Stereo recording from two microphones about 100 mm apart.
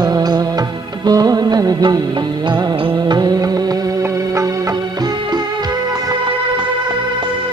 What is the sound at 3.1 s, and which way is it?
Music, 40° right (ahead or behind).